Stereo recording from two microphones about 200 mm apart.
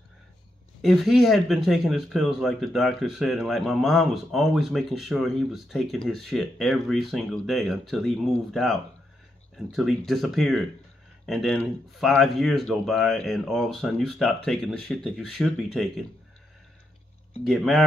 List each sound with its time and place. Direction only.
0.8 s speech: centre (ahead or behind)
17.5 s speech: centre (ahead or behind)